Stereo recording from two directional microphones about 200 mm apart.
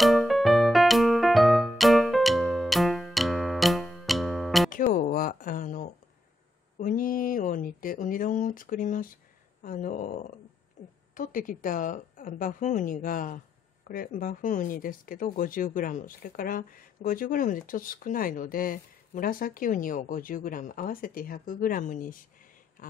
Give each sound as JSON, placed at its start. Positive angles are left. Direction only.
{"t": 0.0, "sound": "music", "side_deg": 0}
{"t": 4.6, "sound": "music", "side_deg": 40}
{"t": 6.8, "sound": "a sound", "side_deg": 45}
{"t": 9.6, "sound": "a woman's voice", "side_deg": 40}